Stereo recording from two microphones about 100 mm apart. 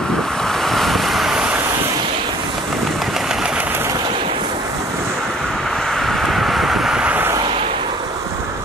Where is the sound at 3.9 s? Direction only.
55° right (ahead or behind).